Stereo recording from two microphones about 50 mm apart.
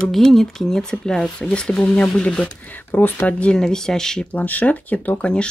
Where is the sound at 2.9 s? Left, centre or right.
Left.